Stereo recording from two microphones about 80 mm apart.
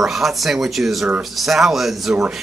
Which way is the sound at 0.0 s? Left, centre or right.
Centre.